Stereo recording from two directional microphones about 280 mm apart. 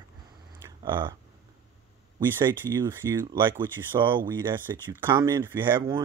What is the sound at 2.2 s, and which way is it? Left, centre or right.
Speech, centre.